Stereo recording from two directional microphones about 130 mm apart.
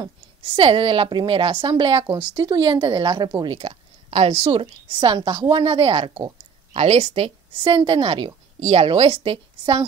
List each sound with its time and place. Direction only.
0.4 s a woman's voice: 45° right (ahead or behind)
3.5 s a woman's voice: 50° right (ahead or behind)